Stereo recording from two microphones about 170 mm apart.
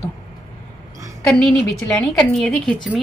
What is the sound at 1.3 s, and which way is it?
Speech, 5° left (ahead or behind).